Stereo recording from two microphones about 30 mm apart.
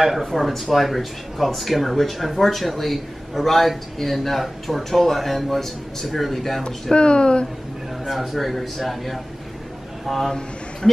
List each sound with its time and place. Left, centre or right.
0.0 s speech: centre
6.6 s speech: left
8.1 s speech: centre